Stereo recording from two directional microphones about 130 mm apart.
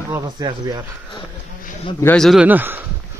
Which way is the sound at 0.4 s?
35° right (ahead or behind).